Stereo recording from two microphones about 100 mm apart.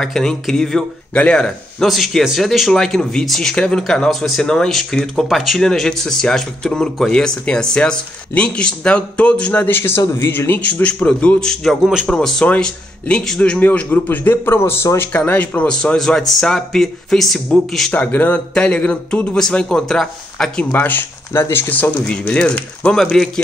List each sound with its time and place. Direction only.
0.0 s speech: 5° left (ahead or behind)
11.8 s speech: 5° right (ahead or behind)
12.1 s speech: 5° left (ahead or behind); by 15.0 s 25° left (ahead or behind)
15.1 s speech: 15° left (ahead or behind)
17.9 s speech: 15° left (ahead or behind)
20.7 s speech: 20° left (ahead or behind)